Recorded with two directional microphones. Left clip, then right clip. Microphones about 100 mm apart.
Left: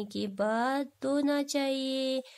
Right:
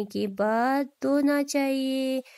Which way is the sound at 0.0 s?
30° right (ahead or behind).